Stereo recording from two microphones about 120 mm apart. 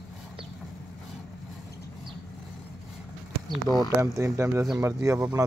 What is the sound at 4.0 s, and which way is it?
Speech, 25° right (ahead or behind).